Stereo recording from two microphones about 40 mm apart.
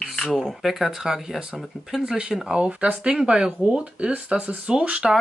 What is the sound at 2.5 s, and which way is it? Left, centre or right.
Speech, right.